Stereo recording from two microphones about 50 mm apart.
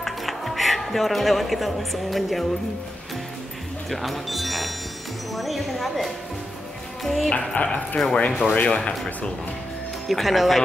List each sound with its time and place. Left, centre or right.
0.0 s speech: centre
3.9 s speech: centre
7.3 s speech: left
8.3 s speech: centre
8.5 s speech: left
10.0 s speech: centre